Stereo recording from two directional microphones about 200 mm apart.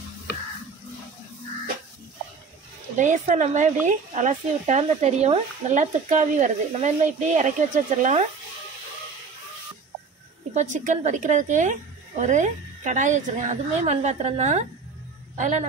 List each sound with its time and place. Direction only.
3.0 s speech: 40° right (ahead or behind)
10.5 s speech: 35° right (ahead or behind)